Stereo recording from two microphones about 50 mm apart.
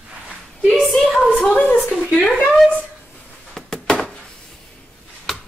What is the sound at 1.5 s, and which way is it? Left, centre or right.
Speech, left.